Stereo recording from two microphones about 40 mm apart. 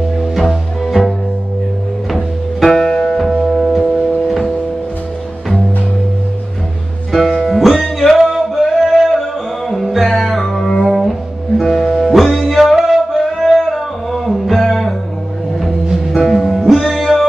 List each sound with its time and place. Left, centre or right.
0.2 s music: centre
2.1 s music: centre
3.3 s music: centre
7.1 s music: centre
8.2 s music: centre
16.2 s music: centre
16.7 s music: centre